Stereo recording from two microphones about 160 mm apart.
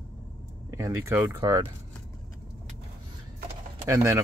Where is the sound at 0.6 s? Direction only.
15° right (ahead or behind).